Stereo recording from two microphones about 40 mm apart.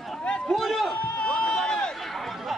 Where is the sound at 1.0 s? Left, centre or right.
Left.